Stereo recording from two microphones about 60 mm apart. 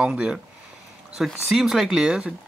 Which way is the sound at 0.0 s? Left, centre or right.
Centre.